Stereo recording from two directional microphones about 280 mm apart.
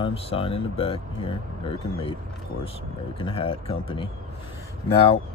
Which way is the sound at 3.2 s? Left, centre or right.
Centre.